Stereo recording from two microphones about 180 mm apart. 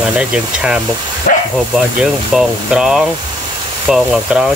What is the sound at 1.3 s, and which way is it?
Speech, 45° left (ahead or behind).